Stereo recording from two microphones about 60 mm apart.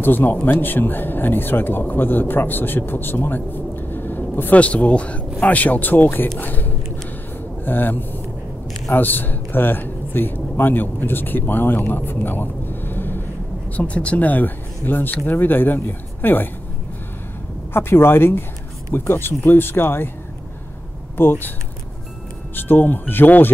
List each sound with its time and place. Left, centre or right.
0.0 s speech: left
4.6 s speech: left
13.7 s speech: left
17.7 s speech: left
21.2 s speech: left
22.6 s speech: left